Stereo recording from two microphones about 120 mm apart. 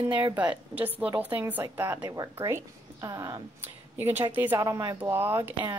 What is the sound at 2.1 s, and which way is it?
A woman's voice, 30° right (ahead or behind).